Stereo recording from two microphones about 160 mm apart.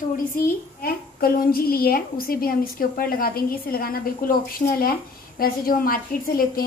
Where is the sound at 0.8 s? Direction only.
70° left (ahead or behind).